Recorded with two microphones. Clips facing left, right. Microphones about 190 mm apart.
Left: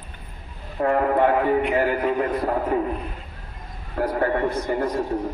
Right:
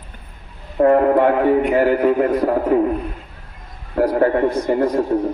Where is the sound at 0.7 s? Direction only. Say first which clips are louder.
Right 7 dB; 45° right (ahead or behind).